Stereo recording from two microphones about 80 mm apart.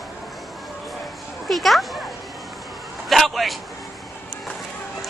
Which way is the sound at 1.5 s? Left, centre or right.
Centre.